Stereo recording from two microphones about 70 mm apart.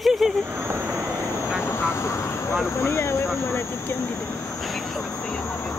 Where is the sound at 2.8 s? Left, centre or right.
Left.